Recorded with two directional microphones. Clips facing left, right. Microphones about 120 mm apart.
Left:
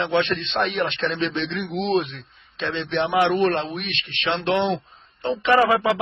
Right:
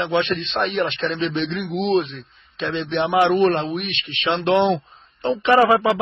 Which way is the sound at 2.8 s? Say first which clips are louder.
Right 2 dB; 20° right (ahead or behind).